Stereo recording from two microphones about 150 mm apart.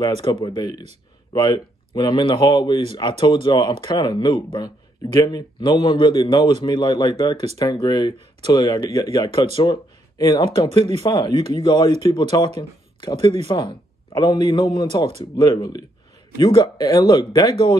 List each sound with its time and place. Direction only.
0.0 s a man's voice: 30° left (ahead or behind)